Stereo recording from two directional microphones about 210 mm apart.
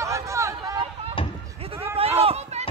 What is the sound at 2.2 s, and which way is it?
Run, 30° right (ahead or behind).